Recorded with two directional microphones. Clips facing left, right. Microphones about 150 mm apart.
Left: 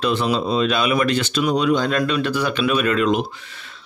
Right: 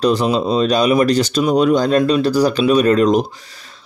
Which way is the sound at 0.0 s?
40° right (ahead or behind).